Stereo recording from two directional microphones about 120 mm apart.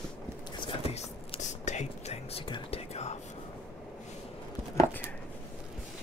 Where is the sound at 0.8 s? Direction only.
60° left (ahead or behind).